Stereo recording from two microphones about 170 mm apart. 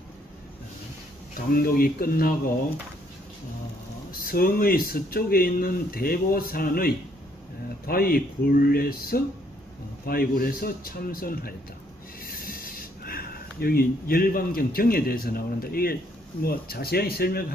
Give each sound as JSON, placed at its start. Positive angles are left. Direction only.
{"t": 1.5, "sound": "speech", "side_deg": 60}
{"t": 4.1, "sound": "speech", "side_deg": 60}